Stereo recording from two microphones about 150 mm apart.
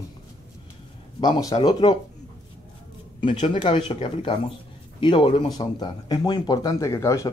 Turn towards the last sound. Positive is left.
turn(degrees=20)  # may be behind; listen again after turning